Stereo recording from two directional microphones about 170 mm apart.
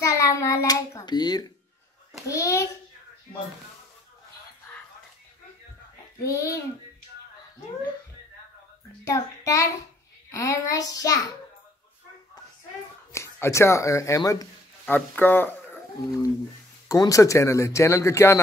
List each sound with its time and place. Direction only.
0.0 s hands: 20° left (ahead or behind)
2.2 s a sound: 20° left (ahead or behind)
6.3 s speech: 20° left (ahead or behind)
9.0 s a child's voice: 20° left (ahead or behind)
13.1 s speech: 15° left (ahead or behind)